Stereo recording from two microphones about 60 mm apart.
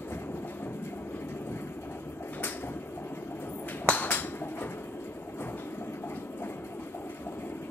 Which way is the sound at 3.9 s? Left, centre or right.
Left.